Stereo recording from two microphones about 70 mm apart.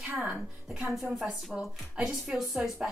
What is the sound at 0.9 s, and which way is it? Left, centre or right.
Speech, centre.